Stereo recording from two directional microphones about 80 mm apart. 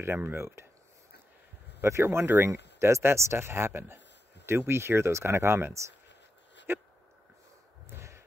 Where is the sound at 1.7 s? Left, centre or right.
Right.